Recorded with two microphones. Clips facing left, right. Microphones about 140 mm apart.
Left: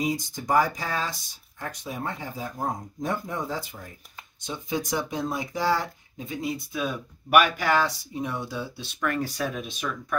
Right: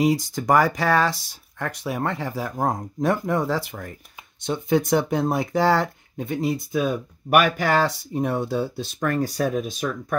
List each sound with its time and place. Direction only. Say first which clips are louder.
0.0 s speech: right 7 dB; 80° right; by 10.1 s 40° right (ahead or behind)